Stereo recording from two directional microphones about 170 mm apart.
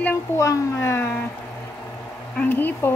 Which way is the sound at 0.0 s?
15° left (ahead or behind).